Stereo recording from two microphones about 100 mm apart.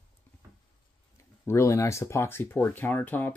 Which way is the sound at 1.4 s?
30° left (ahead or behind).